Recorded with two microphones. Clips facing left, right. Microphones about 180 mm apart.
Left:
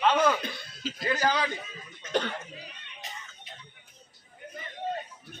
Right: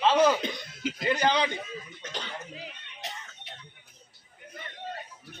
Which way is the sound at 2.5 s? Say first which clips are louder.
Right 2 dB; 75° right (ahead or behind).